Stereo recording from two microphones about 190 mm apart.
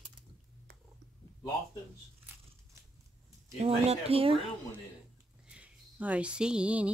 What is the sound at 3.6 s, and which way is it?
Speech, 30° right (ahead or behind).